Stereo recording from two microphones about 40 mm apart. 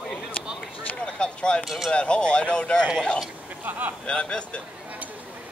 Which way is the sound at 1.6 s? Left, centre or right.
Centre.